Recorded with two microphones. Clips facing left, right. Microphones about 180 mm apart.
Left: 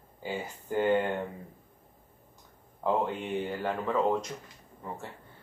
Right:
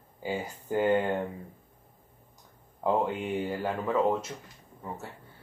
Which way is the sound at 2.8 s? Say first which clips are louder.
Right 2 dB; 10° right (ahead or behind).